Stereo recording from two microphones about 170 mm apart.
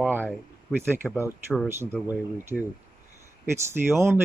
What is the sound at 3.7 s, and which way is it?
Speech, 15° right (ahead or behind).